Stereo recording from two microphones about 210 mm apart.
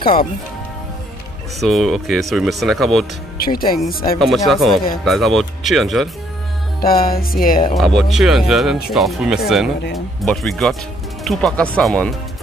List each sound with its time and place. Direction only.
0.0 s speech: 45° left (ahead or behind)
1.6 s speech: centre (ahead or behind)
3.3 s music: 45° left (ahead or behind)
4.2 s speech: centre (ahead or behind)
6.8 s music: 45° left (ahead or behind)
7.7 s speech: centre (ahead or behind)